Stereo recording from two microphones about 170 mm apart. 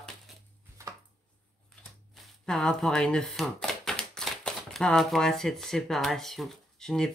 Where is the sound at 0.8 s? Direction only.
15° right (ahead or behind).